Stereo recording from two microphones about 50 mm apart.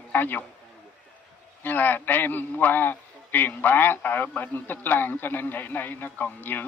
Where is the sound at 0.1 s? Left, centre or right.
Left.